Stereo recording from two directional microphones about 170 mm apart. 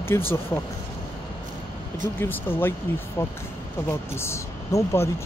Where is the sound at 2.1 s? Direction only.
10° left (ahead or behind).